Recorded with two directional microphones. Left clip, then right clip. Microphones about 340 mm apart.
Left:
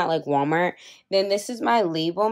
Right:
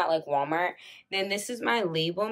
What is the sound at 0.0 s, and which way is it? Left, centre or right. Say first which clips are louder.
Speech: left 4 dB; left.